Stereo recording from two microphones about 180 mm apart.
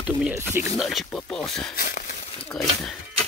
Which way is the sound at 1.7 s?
50° left (ahead or behind).